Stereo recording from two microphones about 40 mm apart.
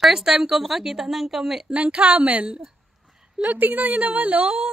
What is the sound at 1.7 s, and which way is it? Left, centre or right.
Speech, right.